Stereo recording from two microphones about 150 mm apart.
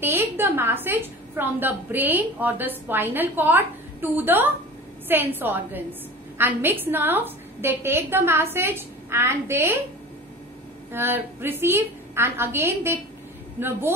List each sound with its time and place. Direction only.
0.0 s a woman's voice: 15° right (ahead or behind)
10.9 s a woman's voice: 15° right (ahead or behind)